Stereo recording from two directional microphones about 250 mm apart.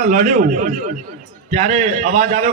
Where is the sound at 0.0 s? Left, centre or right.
Right.